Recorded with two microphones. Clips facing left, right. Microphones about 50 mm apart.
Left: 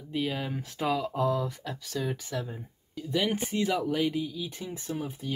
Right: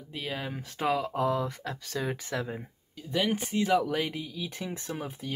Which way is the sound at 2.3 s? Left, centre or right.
Right.